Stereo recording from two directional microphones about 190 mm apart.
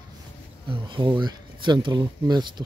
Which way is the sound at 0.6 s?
25° right (ahead or behind).